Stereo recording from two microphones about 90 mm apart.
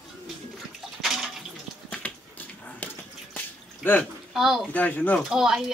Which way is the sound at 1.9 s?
15° left (ahead or behind).